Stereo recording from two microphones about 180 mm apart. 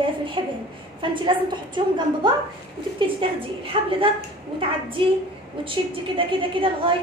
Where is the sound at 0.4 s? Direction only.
25° right (ahead or behind).